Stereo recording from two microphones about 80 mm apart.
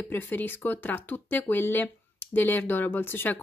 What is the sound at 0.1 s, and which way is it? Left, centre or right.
Speech, left.